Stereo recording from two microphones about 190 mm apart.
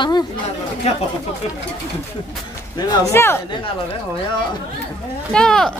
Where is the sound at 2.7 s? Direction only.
15° left (ahead or behind).